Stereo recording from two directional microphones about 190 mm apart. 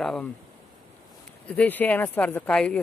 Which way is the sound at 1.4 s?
10° left (ahead or behind).